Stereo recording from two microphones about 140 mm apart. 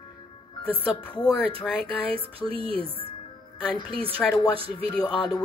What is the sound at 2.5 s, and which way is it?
Speech, 40° right (ahead or behind).